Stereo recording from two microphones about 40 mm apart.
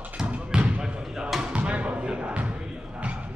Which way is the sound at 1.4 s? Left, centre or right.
Right.